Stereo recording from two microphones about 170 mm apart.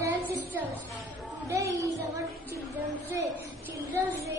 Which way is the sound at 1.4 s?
20° right (ahead or behind).